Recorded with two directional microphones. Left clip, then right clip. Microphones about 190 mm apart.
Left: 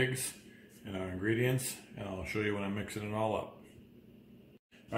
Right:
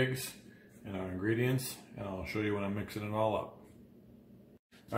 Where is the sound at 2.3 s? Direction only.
15° right (ahead or behind).